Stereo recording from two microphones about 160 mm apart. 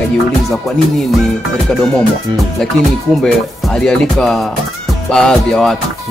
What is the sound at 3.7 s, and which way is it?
Speech, 5° left (ahead or behind).